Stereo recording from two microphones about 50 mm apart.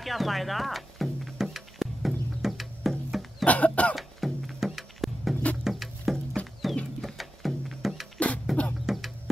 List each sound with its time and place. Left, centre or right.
0.0 s music: centre
3.1 s cough: centre
3.4 s cough: left
3.9 s music: centre
5.3 s bird: left
5.6 s music: centre